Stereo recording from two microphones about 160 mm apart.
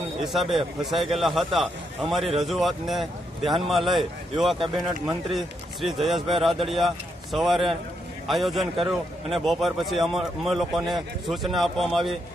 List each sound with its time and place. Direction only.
0.2 s a man's voice: centre (ahead or behind)